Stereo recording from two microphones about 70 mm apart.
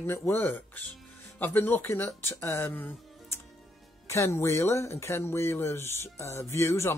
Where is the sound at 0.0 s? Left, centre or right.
Left.